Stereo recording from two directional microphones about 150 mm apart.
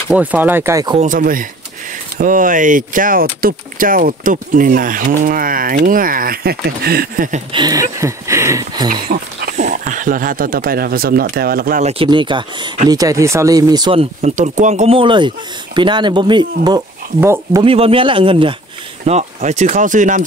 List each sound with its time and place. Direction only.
0.1 s speech: 10° right (ahead or behind)
1.0 s speech: 65° right (ahead or behind)
7.5 s speech: 25° right (ahead or behind)
9.1 s speech: 70° right (ahead or behind)
11.8 s speech: 40° right (ahead or behind)
14.2 s speech: 55° right (ahead or behind)
15.0 s speech: 30° right (ahead or behind)
17.2 s speech: 20° right (ahead or behind)
17.6 s speech: 40° right (ahead or behind)
19.0 s speech: 50° right (ahead or behind)